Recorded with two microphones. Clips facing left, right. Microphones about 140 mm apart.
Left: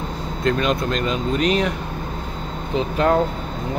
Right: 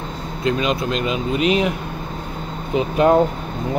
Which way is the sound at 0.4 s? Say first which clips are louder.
Even; 5° right (ahead or behind).